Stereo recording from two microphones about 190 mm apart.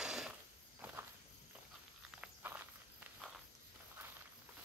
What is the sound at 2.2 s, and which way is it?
Walk, 10° right (ahead or behind).